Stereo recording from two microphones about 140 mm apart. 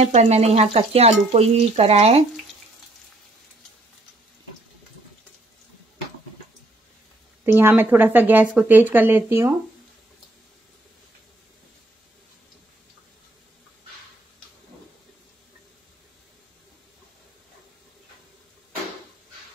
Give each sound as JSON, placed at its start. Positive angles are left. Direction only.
{"t": 0.0, "sound": "speech", "side_deg": -50}
{"t": 7.5, "sound": "speech", "side_deg": -15}